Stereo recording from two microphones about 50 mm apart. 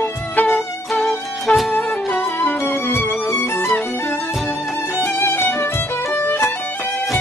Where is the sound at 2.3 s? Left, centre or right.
Left.